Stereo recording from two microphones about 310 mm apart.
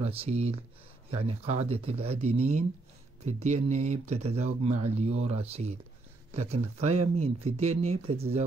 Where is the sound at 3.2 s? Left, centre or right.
Right.